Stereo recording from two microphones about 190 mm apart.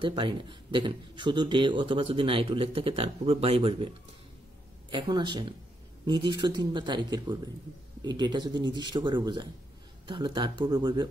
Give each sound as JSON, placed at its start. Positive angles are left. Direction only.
{"t": 0.0, "sound": "a man's voice", "side_deg": -25}
{"t": 4.9, "sound": "a man's voice", "side_deg": -25}